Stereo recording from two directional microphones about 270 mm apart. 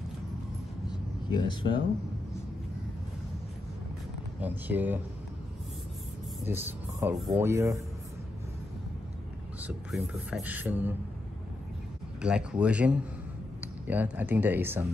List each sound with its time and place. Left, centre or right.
0.8 s a sound: centre
4.4 s speech: centre
6.4 s speech: centre
9.6 s speech: centre
12.2 s speech: centre
13.6 s a sound: centre
14.1 s speech: centre